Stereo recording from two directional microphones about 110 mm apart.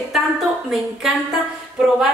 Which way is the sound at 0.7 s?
5° right (ahead or behind).